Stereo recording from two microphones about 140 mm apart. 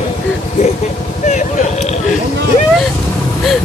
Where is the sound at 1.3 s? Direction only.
55° left (ahead or behind).